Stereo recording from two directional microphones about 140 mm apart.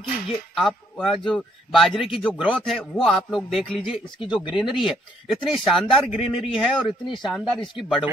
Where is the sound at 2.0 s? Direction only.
40° left (ahead or behind).